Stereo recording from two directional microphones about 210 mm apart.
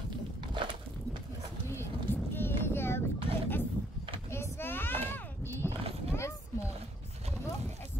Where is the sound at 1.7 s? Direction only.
10° left (ahead or behind).